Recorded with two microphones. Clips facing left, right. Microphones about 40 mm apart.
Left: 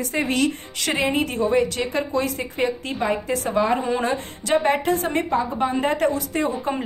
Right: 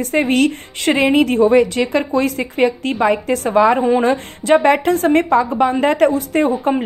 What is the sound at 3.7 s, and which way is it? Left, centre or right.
Speech, centre.